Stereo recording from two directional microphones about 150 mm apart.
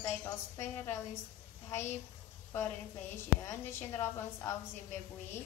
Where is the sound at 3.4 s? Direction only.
20° left (ahead or behind).